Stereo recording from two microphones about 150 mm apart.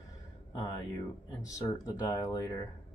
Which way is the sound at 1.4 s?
20° left (ahead or behind).